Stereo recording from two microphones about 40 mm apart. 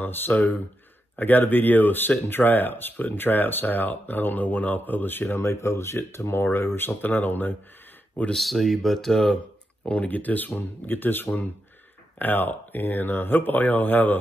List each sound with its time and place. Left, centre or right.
0.0 s speech: left
1.1 s speech: left
6.9 s speech: left
8.4 s speech: centre
9.8 s speech: left